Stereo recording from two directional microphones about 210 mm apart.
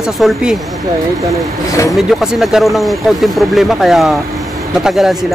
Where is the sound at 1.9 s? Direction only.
Centre (ahead or behind).